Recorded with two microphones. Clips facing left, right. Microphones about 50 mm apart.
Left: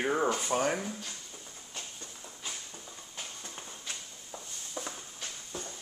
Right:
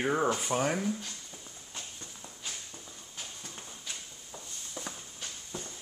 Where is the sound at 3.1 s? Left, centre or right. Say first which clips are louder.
Left 1 dB; centre.